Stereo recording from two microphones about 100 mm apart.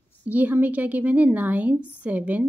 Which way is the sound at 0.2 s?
15° right (ahead or behind).